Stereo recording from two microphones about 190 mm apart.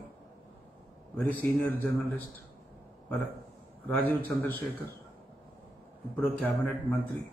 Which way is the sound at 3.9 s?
10° left (ahead or behind).